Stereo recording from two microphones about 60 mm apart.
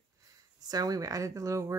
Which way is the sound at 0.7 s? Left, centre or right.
Right.